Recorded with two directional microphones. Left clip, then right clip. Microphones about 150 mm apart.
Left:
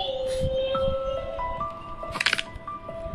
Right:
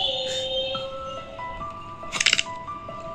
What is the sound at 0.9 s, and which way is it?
Music, 35° left (ahead or behind).